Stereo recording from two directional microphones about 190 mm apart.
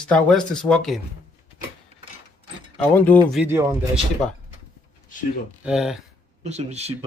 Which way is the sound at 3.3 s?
10° right (ahead or behind).